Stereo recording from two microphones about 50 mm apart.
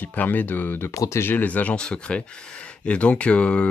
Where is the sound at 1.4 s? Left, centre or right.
Left.